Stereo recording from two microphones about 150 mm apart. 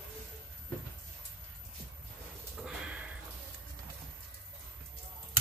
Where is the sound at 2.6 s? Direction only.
5° right (ahead or behind).